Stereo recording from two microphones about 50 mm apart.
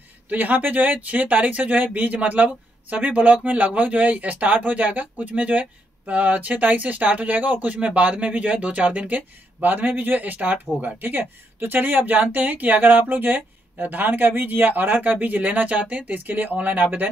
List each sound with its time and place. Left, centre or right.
0.3 s speech: right